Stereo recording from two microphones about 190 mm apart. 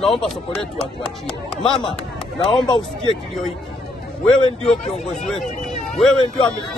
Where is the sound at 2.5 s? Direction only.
25° left (ahead or behind).